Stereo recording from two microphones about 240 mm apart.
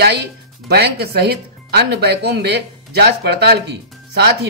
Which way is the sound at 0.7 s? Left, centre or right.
Right.